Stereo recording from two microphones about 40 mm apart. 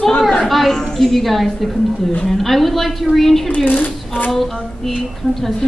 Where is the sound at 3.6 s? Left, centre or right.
Left.